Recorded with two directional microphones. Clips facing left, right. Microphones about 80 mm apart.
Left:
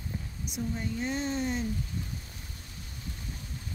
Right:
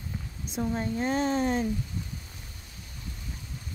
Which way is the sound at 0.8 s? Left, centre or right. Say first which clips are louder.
Right 5 dB; right.